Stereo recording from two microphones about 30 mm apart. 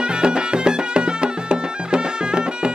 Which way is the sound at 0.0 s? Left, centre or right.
Right.